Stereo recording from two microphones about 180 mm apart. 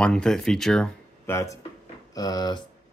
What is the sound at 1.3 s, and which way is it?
Speech, 15° left (ahead or behind).